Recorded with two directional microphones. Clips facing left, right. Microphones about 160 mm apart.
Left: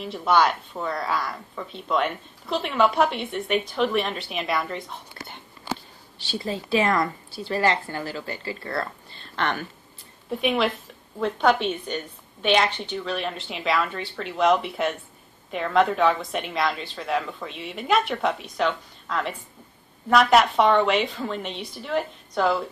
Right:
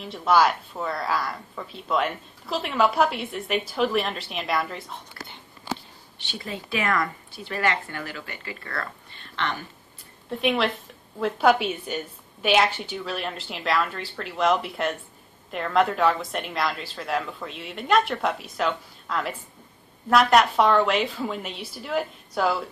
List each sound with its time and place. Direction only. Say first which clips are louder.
0.0 s a woman's voice: even; centre (ahead or behind)
6.1 s a woman's voice: left 5 dB; 35° left (ahead or behind)
9.4 s speech: left 3 dB; 60° left (ahead or behind)
10.3 s a woman's voice: left 1 dB; centre (ahead or behind)